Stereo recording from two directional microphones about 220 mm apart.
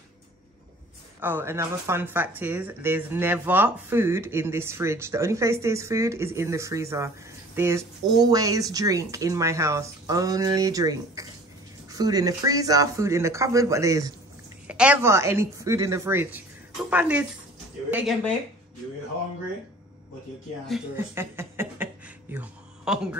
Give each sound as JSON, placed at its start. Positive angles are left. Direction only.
{"t": 1.2, "sound": "speech", "side_deg": -10}
{"t": 20.6, "sound": "speech", "side_deg": 0}
{"t": 21.1, "sound": "a sound", "side_deg": -10}